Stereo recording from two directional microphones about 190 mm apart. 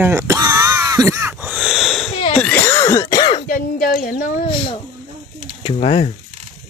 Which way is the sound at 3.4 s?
50° left (ahead or behind).